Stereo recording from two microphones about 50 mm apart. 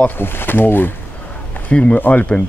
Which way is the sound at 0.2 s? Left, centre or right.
Left.